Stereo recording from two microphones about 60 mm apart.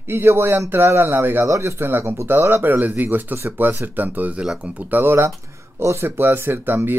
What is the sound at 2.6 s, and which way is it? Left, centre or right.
Speech, right.